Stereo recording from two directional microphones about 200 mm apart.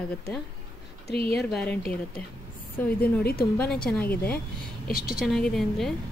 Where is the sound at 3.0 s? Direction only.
50° left (ahead or behind).